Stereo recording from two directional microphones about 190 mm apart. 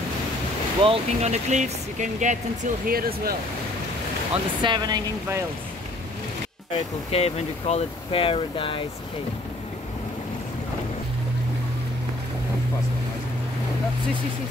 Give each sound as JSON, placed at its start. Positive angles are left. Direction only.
{"t": 0.8, "sound": "speech", "side_deg": -30}
{"t": 4.6, "sound": "speech", "side_deg": -25}
{"t": 6.7, "sound": "speech", "side_deg": 30}